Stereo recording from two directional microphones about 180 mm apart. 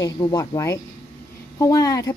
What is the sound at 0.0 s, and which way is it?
Speech, 20° left (ahead or behind).